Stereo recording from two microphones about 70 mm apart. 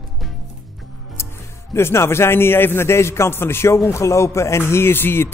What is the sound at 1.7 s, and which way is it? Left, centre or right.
Speech, left.